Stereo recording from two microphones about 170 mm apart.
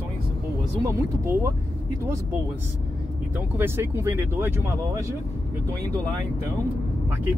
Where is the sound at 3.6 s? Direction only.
15° right (ahead or behind).